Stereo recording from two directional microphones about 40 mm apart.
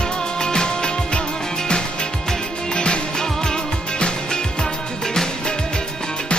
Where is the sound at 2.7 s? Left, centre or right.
Left.